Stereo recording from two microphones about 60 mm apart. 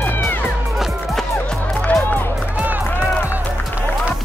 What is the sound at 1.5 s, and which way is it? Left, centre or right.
Music, centre.